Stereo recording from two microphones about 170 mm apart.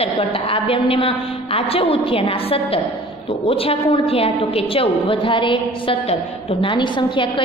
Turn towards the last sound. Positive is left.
turn(degrees=30)  # may be behind; listen again after turning